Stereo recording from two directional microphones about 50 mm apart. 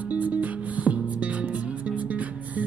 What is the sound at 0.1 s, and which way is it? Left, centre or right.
Music, right.